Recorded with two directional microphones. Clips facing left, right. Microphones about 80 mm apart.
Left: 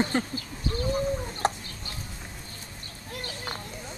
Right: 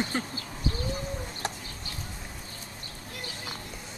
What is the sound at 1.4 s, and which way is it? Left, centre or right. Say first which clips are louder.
Chicken: left 9 dB; left.